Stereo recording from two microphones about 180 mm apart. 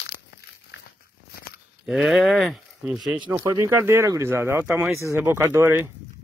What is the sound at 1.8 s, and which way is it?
Speech, centre (ahead or behind).